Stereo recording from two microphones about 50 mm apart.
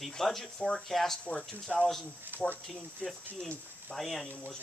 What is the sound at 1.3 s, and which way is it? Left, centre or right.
Speech, centre.